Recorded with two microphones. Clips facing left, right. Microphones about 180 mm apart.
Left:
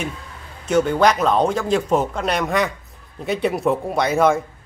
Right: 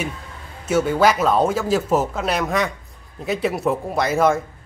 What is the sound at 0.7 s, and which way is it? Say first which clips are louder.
Speech: left 1 dB; 5° right (ahead or behind).